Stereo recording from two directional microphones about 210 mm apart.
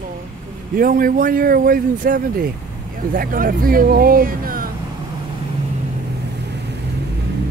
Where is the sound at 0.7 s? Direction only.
40° right (ahead or behind).